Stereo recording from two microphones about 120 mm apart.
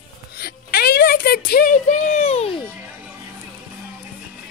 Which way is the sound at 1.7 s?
75° left (ahead or behind).